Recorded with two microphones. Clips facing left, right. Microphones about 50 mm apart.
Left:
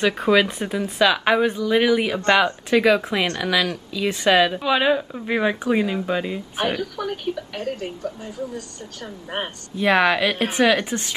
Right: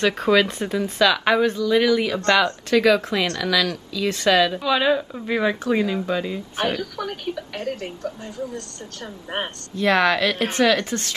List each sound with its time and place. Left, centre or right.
0.0 s speech: centre
9.0 s speech: centre
9.8 s speech: centre